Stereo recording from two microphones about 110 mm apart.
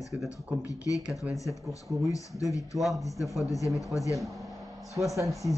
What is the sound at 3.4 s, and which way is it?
Speech, 30° left (ahead or behind).